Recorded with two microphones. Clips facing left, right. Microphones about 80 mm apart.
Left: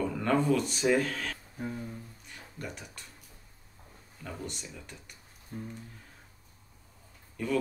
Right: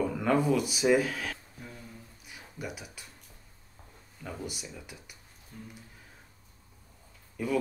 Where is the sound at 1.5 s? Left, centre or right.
Left.